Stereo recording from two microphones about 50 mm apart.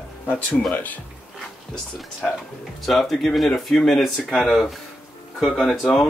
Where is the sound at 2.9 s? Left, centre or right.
Centre.